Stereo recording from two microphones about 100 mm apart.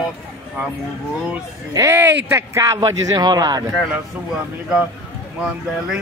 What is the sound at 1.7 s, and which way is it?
Speech, 30° right (ahead or behind).